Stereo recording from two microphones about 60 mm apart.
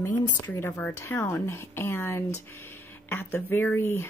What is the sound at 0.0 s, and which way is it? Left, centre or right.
Speech, left.